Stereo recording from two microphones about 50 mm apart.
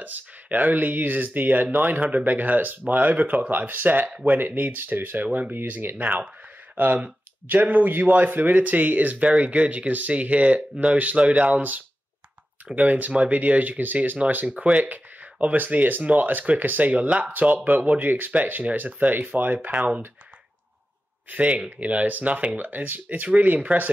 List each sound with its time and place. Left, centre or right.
0.0 s speech: right
7.4 s speech: right
9.3 s speech: right
21.3 s speech: right